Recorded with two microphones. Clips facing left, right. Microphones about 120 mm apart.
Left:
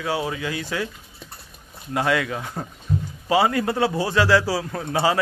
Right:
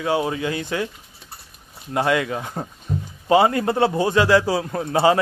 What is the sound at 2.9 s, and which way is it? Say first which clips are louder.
Rowboat: left 2 dB; 35° right (ahead or behind).